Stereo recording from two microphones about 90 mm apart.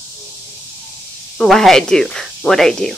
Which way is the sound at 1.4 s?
5° left (ahead or behind).